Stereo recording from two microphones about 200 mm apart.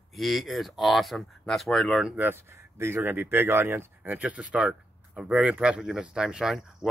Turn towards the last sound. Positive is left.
turn(degrees=-5)  # may be behind; listen again after turning